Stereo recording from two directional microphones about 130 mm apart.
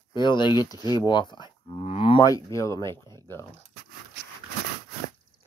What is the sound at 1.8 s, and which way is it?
Cattle, 50° left (ahead or behind).